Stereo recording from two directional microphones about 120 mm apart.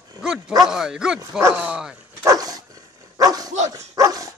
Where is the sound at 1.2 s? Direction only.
20° right (ahead or behind).